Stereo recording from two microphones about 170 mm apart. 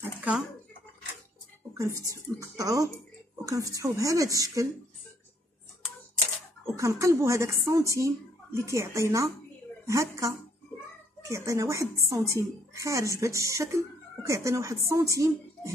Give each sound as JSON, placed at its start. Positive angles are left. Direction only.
{"t": 0.0, "sound": "a sound", "side_deg": -10}
{"t": 1.7, "sound": "speech", "side_deg": -20}
{"t": 6.7, "sound": "a woman's voice", "side_deg": -15}